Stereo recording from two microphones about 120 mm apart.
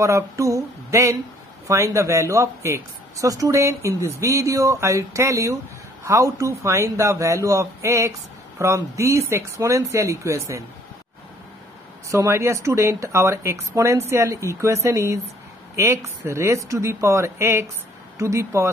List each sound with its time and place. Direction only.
0.0 s a woman's voice: 25° right (ahead or behind)
12.1 s a woman's voice: 25° right (ahead or behind)